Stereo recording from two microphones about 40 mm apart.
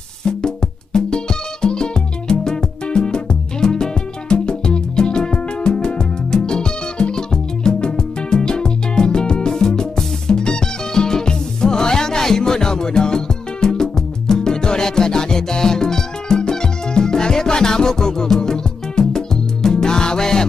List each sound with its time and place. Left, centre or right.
0.2 s music: centre